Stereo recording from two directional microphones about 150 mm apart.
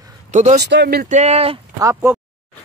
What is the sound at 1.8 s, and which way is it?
Speech, 20° right (ahead or behind).